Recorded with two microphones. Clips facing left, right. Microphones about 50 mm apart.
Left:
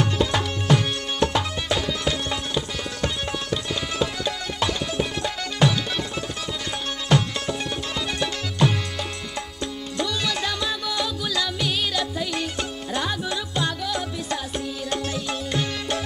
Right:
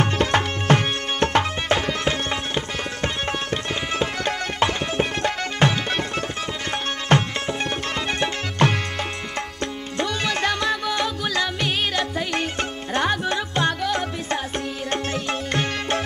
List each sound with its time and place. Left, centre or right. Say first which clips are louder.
0.0 s music: right 2 dB; right
7.1 s music: right 1 dB; right
9.9 s music: right 2 dB; right